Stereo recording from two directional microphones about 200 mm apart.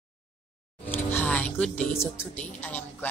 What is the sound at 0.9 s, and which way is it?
Music, 10° left (ahead or behind).